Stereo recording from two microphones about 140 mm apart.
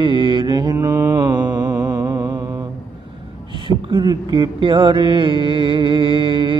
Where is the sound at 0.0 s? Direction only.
35° right (ahead or behind).